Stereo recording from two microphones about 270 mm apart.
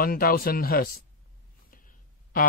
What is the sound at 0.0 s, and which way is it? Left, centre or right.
Speech, left.